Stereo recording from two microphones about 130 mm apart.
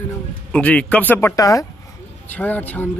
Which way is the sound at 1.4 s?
25° left (ahead or behind).